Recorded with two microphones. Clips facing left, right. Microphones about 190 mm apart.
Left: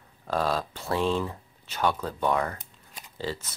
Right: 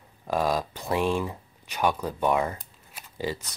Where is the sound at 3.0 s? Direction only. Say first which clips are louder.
Right 2 dB; 15° right (ahead or behind).